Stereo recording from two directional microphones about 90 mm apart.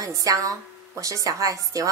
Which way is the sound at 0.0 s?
40° right (ahead or behind).